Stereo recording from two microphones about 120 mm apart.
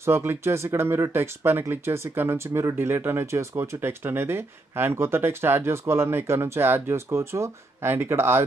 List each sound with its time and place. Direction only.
0.0 s speech: 20° right (ahead or behind)